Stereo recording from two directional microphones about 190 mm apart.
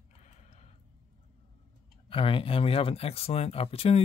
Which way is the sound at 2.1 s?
30° left (ahead or behind).